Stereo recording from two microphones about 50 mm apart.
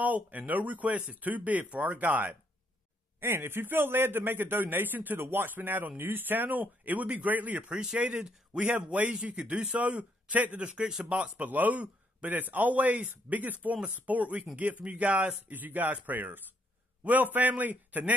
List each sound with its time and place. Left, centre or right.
0.0 s a man's voice: right
3.2 s a man's voice: right
7.7 s speech: centre
9.8 s a man's voice: right
10.8 s speech: centre
11.1 s a man's voice: right